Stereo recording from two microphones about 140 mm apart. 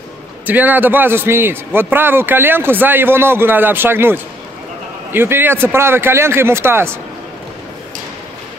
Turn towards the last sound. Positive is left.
turn(degrees=-15)  # may be behind; listen again after turning